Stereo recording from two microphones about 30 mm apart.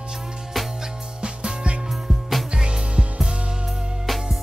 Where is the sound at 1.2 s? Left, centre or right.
Right.